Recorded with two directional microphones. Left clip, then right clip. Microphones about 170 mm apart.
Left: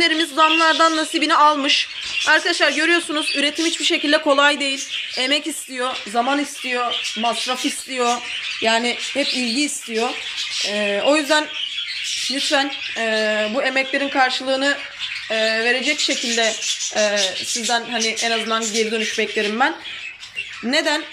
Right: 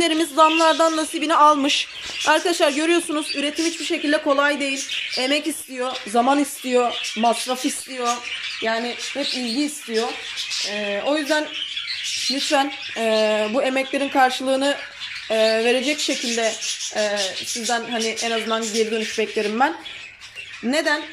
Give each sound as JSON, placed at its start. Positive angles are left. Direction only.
{"t": 0.0, "sound": "speech", "side_deg": -20}
{"t": 3.1, "sound": "speech", "side_deg": -5}
{"t": 6.1, "sound": "speech", "side_deg": -20}
{"t": 8.6, "sound": "speech", "side_deg": 5}
{"t": 12.5, "sound": "speech", "side_deg": -10}
{"t": 16.3, "sound": "speech", "side_deg": 0}